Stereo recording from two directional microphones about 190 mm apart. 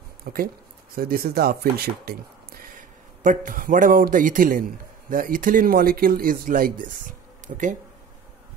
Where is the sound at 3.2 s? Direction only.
45° right (ahead or behind).